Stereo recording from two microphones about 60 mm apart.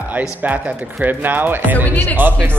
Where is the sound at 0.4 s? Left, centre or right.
Right.